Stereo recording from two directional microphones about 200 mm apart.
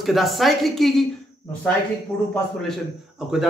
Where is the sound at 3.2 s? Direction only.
Centre (ahead or behind).